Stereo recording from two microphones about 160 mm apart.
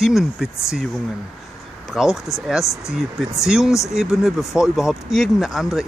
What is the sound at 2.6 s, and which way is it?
Speech, 20° left (ahead or behind).